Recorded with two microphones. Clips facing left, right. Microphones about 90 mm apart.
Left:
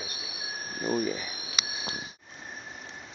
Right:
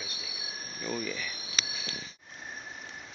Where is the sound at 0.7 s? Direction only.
45° left (ahead or behind).